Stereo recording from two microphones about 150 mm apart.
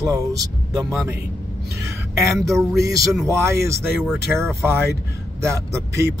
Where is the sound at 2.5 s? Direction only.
20° right (ahead or behind).